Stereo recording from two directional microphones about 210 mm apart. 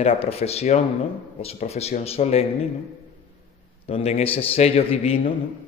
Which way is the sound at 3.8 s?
30° left (ahead or behind).